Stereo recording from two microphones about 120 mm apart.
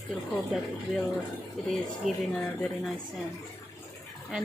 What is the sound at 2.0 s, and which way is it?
Speech, centre (ahead or behind).